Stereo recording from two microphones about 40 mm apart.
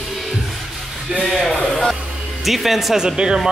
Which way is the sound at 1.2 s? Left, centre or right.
Centre.